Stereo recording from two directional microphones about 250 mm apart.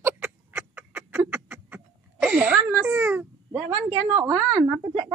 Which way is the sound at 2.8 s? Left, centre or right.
Centre.